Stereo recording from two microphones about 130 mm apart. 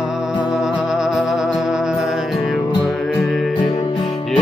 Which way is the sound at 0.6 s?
5° right (ahead or behind).